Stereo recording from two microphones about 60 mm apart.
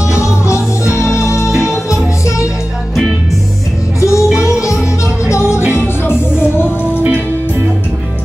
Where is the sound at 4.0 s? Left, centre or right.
Left.